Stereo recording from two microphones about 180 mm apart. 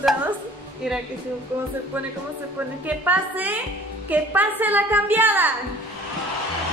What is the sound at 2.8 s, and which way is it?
A woman's voice, 10° right (ahead or behind).